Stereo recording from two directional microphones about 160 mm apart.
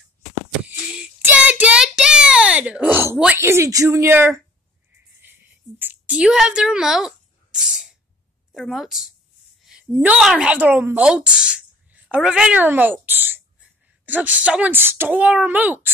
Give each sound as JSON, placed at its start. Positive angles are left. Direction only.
{"t": 0.7, "sound": "child singing", "side_deg": -5}
{"t": 3.3, "sound": "speech", "side_deg": -15}
{"t": 5.2, "sound": "a sound", "side_deg": -10}
{"t": 8.5, "sound": "a woman's voice", "side_deg": 0}